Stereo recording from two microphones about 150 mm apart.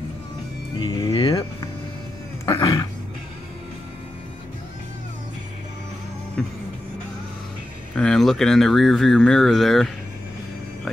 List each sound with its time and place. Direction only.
0.7 s music: 30° left (ahead or behind)
2.4 s a sound: 25° left (ahead or behind)
6.4 s music: 5° left (ahead or behind)
7.9 s speech: 5° left (ahead or behind)